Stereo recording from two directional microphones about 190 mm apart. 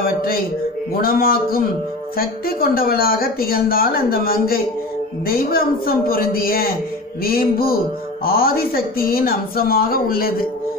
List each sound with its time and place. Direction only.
0.0 s mantra: 50° left (ahead or behind)
1.0 s speech: 50° left (ahead or behind)